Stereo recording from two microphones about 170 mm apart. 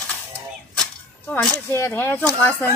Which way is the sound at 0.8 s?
5° left (ahead or behind).